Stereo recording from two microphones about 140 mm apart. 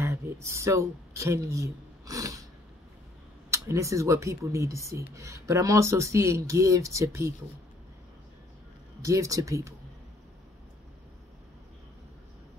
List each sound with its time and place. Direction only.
0.0 s speech: 20° right (ahead or behind)
3.4 s speech: 20° right (ahead or behind)
9.0 s speech: 25° right (ahead or behind)